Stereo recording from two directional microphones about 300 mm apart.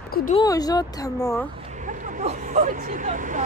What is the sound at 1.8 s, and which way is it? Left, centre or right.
Speech, right.